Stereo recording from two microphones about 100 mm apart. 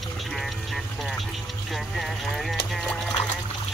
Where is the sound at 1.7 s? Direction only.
Centre (ahead or behind).